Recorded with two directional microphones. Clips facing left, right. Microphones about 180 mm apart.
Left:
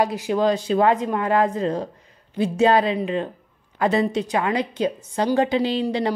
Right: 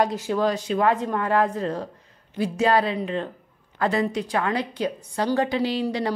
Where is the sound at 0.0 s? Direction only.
15° left (ahead or behind); by 0.8 s 30° left (ahead or behind).